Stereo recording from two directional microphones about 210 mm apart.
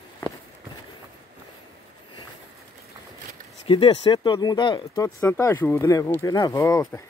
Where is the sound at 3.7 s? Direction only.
25° left (ahead or behind).